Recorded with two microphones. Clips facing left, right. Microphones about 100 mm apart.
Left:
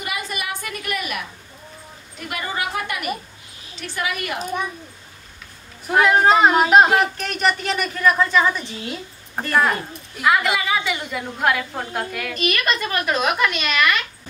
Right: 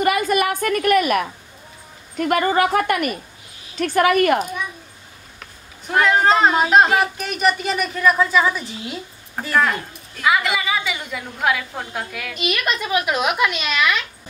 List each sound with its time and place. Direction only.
0.0 s a sound: 50° right (ahead or behind)
2.1 s a woman's voice: 50° right (ahead or behind)
5.9 s speech: 5° left (ahead or behind)
9.6 s speech: 10° left (ahead or behind)
10.2 s a woman's voice: centre (ahead or behind)